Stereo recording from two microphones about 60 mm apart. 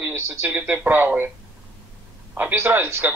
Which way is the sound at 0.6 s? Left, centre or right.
Right.